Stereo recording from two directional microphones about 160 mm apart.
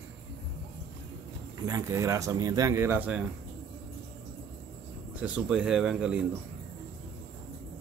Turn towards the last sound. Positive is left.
turn(degrees=-5)  # may be behind; listen again after turning